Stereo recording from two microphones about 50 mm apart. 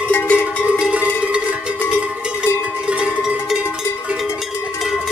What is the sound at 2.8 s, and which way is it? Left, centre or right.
Cowbell, right.